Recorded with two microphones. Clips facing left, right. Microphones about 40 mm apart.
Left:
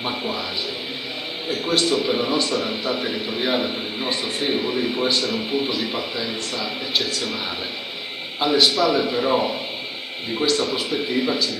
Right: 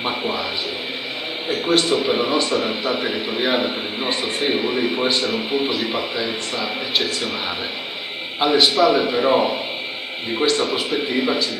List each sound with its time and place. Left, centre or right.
0.0 s speech: centre
1.5 s speech: centre
8.4 s speech: centre